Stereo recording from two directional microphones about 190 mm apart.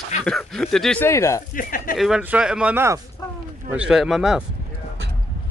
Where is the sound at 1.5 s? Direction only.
50° left (ahead or behind).